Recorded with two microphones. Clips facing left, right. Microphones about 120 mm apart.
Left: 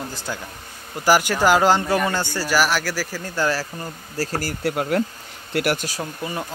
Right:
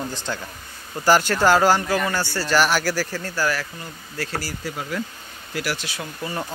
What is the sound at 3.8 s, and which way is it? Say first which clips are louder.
Speech: left 4 dB; 40° left (ahead or behind).